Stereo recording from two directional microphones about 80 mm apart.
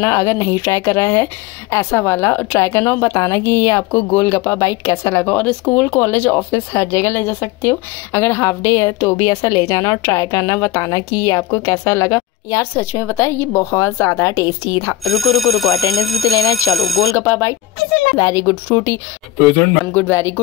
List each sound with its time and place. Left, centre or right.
0.0 s a woman's voice: left
3.0 s a woman's voice: left
3.4 s a woman's voice: left
3.9 s speech: left
4.3 s a woman's voice: left
5.4 s speech: centre
5.9 s a woman's voice: left
15.0 s speech: centre
17.1 s a woman's voice: left
18.4 s speech: left